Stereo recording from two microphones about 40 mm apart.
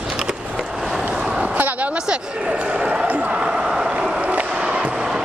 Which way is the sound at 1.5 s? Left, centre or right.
Right.